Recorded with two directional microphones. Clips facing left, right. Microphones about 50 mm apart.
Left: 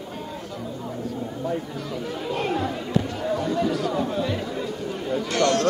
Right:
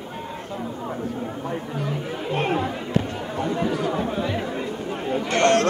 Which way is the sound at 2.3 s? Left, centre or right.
Right.